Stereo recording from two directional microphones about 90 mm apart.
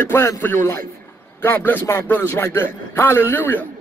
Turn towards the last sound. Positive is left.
turn(degrees=20)  # may be behind; listen again after turning